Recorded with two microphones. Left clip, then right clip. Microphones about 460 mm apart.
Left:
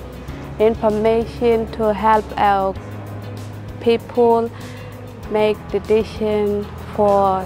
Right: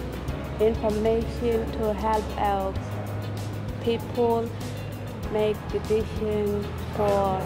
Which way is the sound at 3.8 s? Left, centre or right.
Left.